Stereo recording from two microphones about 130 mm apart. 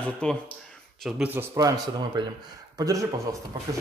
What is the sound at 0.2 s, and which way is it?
Speech, 10° left (ahead or behind).